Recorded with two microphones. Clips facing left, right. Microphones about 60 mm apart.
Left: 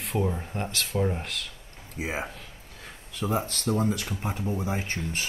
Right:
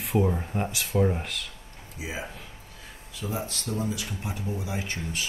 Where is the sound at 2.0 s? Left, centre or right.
Left.